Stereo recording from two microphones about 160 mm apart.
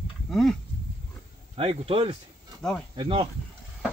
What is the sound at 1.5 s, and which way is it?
Speech, 35° right (ahead or behind).